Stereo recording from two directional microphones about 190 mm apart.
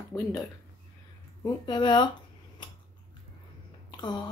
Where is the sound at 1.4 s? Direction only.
25° left (ahead or behind).